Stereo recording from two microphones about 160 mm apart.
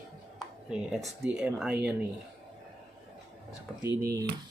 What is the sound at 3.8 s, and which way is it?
Speech, 20° right (ahead or behind).